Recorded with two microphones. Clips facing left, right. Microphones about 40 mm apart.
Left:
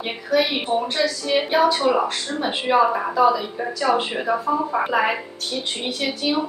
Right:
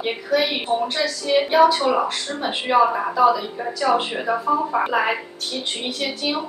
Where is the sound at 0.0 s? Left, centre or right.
Centre.